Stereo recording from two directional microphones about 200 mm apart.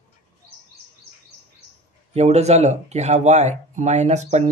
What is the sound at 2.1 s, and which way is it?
Speech, 35° right (ahead or behind).